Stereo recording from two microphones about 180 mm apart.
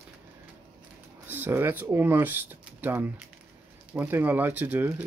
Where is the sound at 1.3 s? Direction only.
10° right (ahead or behind).